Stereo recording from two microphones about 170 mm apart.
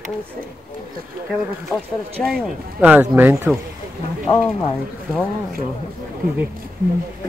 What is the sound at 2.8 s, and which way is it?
Speech, 10° right (ahead or behind).